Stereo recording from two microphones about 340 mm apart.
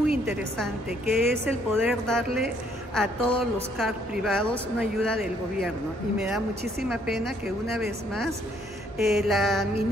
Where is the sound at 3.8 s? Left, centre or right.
Centre.